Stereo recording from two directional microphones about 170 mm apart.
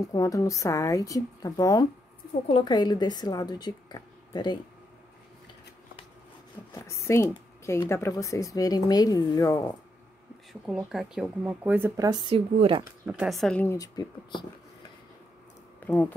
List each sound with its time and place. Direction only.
0.1 s a woman's voice: 20° left (ahead or behind)
6.7 s a woman's voice: 15° left (ahead or behind)
10.5 s speech: centre (ahead or behind)
12.1 s speech: 30° right (ahead or behind)
13.2 s speech: centre (ahead or behind)
13.7 s a woman's voice: 20° left (ahead or behind)
15.8 s speech: 10° left (ahead or behind)